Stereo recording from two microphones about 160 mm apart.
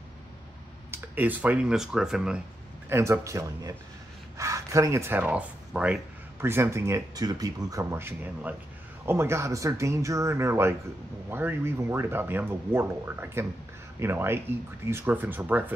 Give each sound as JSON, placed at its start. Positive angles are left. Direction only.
{"t": 0.9, "sound": "speech", "side_deg": -10}
{"t": 2.9, "sound": "speech", "side_deg": -15}